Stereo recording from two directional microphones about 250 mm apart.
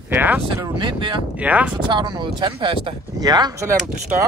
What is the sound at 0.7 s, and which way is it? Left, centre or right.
Speech, centre.